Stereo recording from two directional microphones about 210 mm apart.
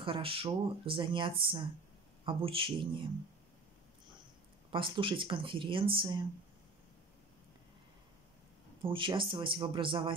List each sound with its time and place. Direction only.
0.0 s speech: 25° right (ahead or behind)
4.6 s speech: 25° right (ahead or behind)
8.8 s speech: 25° right (ahead or behind)